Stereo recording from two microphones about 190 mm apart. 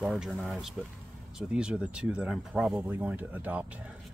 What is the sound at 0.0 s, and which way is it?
Speech, centre (ahead or behind).